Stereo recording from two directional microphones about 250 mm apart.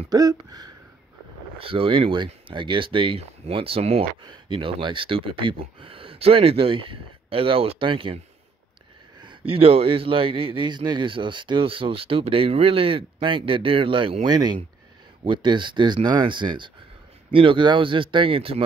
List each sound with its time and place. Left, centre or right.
0.1 s a sound: centre
1.6 s speech: right
9.2 s speech: right